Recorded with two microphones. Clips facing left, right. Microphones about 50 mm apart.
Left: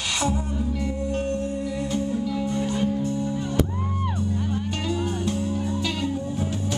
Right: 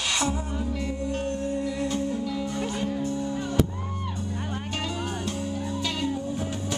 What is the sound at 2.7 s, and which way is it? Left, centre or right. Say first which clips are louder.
Music: left 4 dB; right.